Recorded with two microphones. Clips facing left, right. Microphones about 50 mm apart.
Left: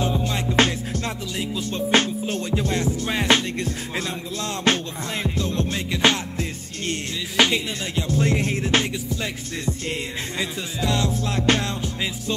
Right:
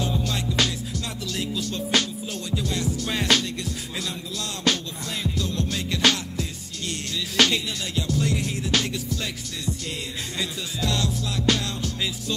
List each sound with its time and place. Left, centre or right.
0.0 s music: left
1.3 s music: left
4.7 s music: left
7.3 s music: left
8.1 s music: left
10.4 s music: left